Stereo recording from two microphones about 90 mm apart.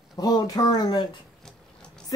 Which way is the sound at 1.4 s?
10° left (ahead or behind).